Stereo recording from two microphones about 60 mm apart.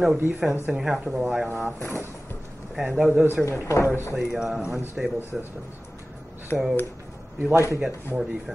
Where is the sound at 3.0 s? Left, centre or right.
Centre.